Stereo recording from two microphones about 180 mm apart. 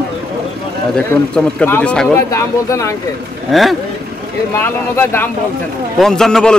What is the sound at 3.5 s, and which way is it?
Speech, centre (ahead or behind).